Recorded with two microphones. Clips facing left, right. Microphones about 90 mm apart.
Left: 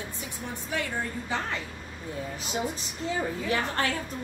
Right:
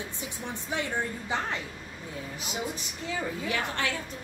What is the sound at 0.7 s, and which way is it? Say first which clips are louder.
Speech: even; 20° right (ahead or behind).